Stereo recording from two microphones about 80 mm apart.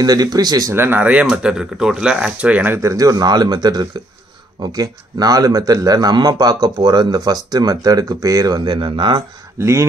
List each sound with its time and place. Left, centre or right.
0.0 s speech: right
0.7 s speech: right
2.8 s speech: right
9.6 s speech: right